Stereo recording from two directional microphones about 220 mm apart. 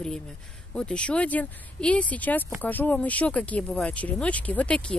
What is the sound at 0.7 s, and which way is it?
Speech, 5° left (ahead or behind).